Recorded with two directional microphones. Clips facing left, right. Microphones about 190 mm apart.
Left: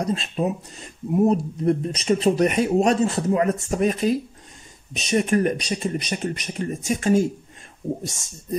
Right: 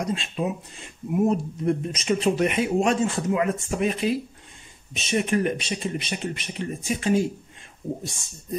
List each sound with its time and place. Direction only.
0.0 s speech: 35° left (ahead or behind)